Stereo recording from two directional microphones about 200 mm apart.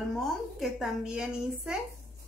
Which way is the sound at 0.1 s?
Centre (ahead or behind).